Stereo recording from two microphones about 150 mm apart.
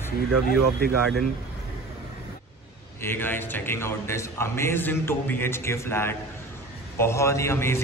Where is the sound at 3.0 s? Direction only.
15° left (ahead or behind).